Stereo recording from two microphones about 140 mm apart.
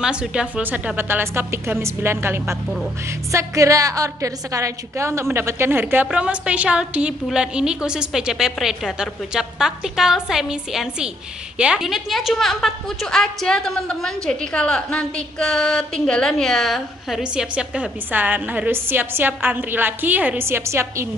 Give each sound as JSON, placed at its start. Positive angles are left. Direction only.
{"t": 0.0, "sound": "a woman's voice", "side_deg": -5}